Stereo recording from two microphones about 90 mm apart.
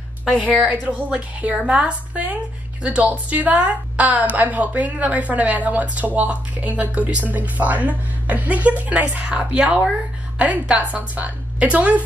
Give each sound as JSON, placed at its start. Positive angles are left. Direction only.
{"t": 0.2, "sound": "a woman's voice", "side_deg": -5}
{"t": 0.7, "sound": "a woman's voice", "side_deg": -15}